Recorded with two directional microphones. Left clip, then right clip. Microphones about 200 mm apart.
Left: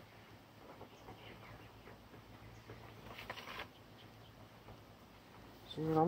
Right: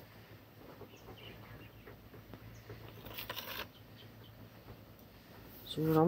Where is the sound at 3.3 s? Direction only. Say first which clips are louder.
Right 4 dB; 45° right (ahead or behind).